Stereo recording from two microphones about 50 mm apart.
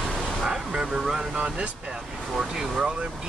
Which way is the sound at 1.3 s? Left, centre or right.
Right.